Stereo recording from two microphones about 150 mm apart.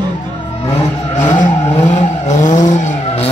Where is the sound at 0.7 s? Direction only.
45° left (ahead or behind).